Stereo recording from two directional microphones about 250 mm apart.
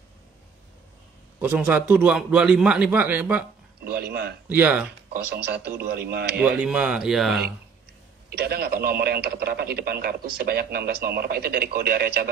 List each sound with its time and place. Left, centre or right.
1.4 s a man's voice: centre
3.8 s speech: right
4.5 s speech: centre
5.1 s speech: right
6.3 s a man's voice: centre
8.3 s speech: right